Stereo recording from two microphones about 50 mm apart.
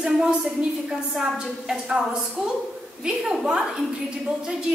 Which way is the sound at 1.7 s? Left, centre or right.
Centre.